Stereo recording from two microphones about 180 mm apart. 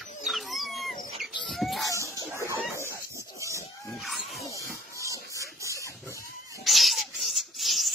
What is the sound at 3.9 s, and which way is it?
Screaming, centre (ahead or behind).